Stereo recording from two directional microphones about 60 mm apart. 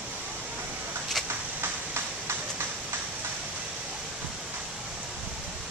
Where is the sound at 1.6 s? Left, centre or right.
Right.